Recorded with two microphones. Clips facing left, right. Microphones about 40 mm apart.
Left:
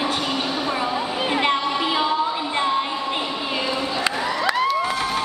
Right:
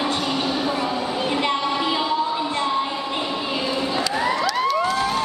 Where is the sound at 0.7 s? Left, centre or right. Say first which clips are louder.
Even; left.